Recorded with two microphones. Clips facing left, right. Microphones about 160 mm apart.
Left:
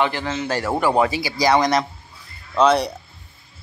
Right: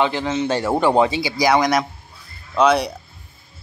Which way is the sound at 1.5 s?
10° right (ahead or behind).